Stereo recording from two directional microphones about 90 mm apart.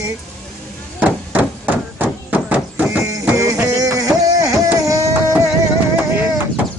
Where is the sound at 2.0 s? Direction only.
15° right (ahead or behind).